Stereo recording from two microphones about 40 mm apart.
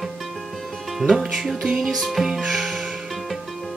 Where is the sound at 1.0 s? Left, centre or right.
Centre.